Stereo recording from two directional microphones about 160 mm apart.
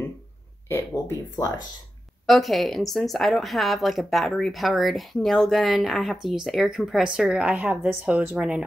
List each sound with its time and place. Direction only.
0.7 s speech: 15° left (ahead or behind)
1.3 s speech: 25° left (ahead or behind)
2.2 s speech: centre (ahead or behind)